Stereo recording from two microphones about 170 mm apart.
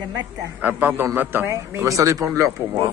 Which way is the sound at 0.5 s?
10° right (ahead or behind).